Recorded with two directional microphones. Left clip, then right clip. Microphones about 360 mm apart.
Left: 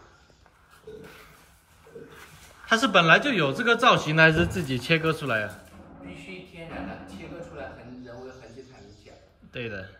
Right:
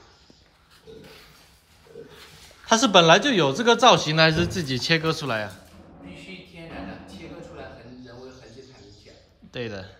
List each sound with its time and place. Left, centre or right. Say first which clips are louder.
2.6 s speech: right 4 dB; centre
6.0 s a sound: even; centre
9.5 s speech: right 2 dB; centre